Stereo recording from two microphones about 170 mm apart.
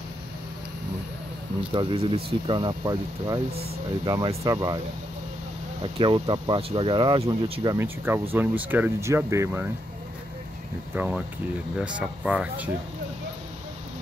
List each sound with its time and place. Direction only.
1.7 s speech: 30° right (ahead or behind)
5.8 s speech: 30° right (ahead or behind)
7.7 s speech: 15° right (ahead or behind)
11.0 s speech: 10° right (ahead or behind)